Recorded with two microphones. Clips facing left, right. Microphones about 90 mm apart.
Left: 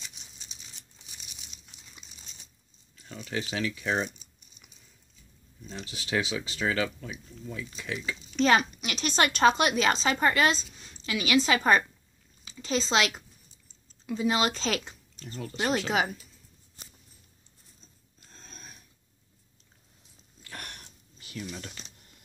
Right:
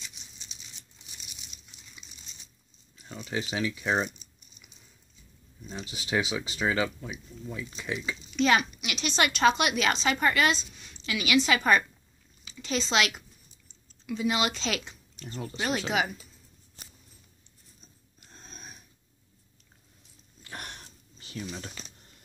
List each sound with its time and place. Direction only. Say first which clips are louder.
3.0 s speech: right 1 dB; 20° right (ahead or behind)
5.7 s speech: right 1 dB; 20° right (ahead or behind)
8.3 s a woman's voice: left 1 dB; 35° left (ahead or behind)
15.2 s speech: even; 25° right (ahead or behind)
18.2 s a sound: right 2 dB; 15° right (ahead or behind)
20.4 s a sound: right 2 dB; 20° right (ahead or behind)